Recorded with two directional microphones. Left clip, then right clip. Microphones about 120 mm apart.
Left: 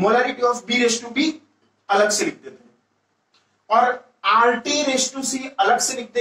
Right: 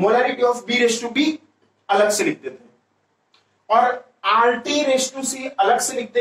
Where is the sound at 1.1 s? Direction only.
45° right (ahead or behind).